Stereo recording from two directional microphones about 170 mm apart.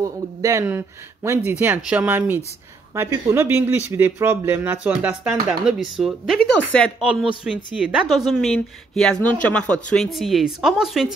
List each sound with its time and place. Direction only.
0.0 s a woman's voice: 20° right (ahead or behind); by 11.1 s centre (ahead or behind)